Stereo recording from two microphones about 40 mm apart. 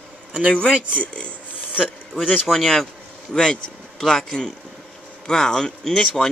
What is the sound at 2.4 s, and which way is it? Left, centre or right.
Speech, centre.